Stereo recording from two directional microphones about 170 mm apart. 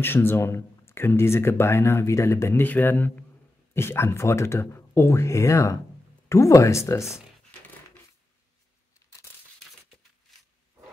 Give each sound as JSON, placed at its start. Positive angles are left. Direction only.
{"t": 0.0, "sound": "speech", "side_deg": 15}